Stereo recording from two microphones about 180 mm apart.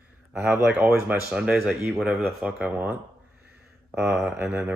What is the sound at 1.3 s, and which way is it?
Speech, 5° right (ahead or behind).